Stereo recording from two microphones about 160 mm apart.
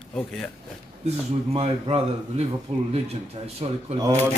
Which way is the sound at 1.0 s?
40° right (ahead or behind).